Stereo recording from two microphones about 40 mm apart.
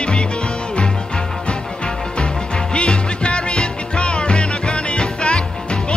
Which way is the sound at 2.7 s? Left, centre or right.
Left.